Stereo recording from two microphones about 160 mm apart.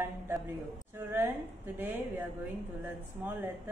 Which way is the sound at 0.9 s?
15° right (ahead or behind).